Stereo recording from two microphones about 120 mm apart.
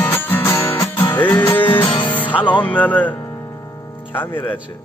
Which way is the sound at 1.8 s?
45° left (ahead or behind).